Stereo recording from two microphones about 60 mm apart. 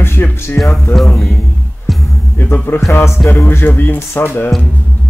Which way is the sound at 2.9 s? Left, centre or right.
Left.